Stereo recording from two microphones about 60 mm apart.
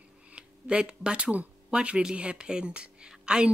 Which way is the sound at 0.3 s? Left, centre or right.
Centre.